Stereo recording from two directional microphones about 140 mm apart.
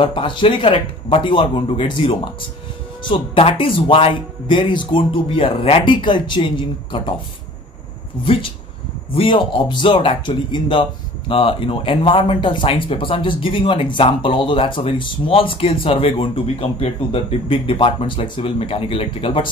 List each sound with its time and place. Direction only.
0.0 s speech: 35° left (ahead or behind)
8.2 s speech: 40° left (ahead or behind)